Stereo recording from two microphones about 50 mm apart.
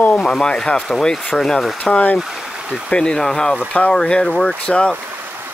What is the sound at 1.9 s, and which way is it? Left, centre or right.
Speech, left.